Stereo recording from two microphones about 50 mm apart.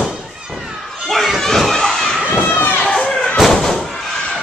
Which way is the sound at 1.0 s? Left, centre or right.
Centre.